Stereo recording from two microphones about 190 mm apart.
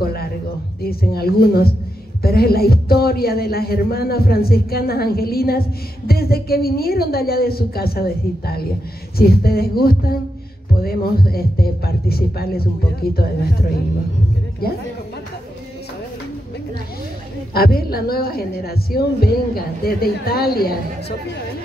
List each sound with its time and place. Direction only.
0.0 s music: 55° left (ahead or behind)
0.8 s a man's voice: 55° left (ahead or behind)
17.6 s a man's voice: 55° left (ahead or behind)